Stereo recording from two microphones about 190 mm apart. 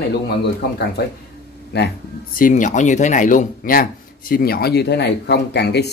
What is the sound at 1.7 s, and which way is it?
Speech, 60° left (ahead or behind).